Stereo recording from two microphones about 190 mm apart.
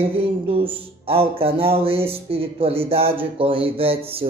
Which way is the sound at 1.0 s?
30° right (ahead or behind).